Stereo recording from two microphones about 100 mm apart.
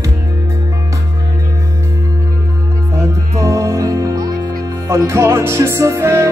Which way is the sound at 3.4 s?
30° right (ahead or behind).